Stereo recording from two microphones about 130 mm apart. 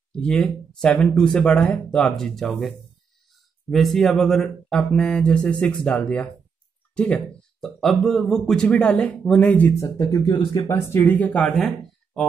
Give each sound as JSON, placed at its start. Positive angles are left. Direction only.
{"t": 0.1, "sound": "speech", "side_deg": 5}
{"t": 3.7, "sound": "speech", "side_deg": 0}
{"t": 7.6, "sound": "speech", "side_deg": 5}
{"t": 9.8, "sound": "speech", "side_deg": 25}